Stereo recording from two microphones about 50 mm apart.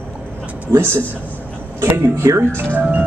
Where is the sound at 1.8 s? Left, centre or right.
Right.